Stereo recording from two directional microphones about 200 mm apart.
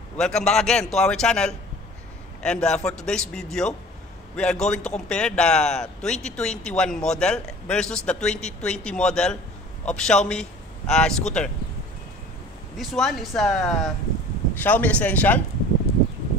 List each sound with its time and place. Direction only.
0.2 s a man's voice: 5° left (ahead or behind)
12.7 s a man's voice: centre (ahead or behind)
15.9 s a sound: 55° right (ahead or behind)